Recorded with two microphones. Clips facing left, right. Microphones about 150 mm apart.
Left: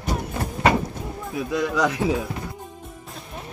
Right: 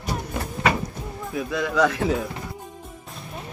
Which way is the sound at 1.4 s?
15° left (ahead or behind).